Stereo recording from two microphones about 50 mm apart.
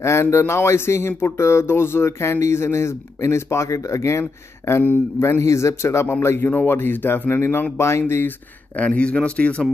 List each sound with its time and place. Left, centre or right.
0.0 s speech: left
5.4 s a man's voice: left
6.2 s speech: left
8.7 s speech: left